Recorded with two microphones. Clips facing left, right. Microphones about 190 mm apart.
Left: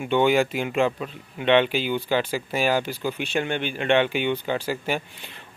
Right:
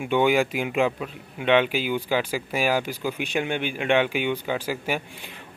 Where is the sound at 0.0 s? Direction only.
10° right (ahead or behind).